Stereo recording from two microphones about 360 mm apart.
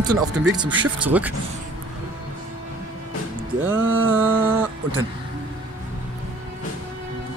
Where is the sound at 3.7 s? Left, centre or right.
Right.